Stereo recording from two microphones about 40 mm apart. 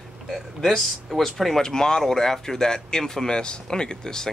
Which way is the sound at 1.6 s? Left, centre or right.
Centre.